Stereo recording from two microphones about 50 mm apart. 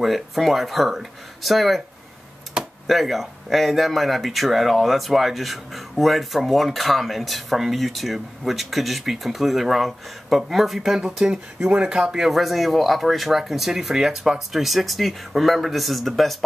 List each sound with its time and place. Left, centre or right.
0.0 s speech: centre
2.6 s a sound: centre
2.9 s speech: centre
12.3 s speech: centre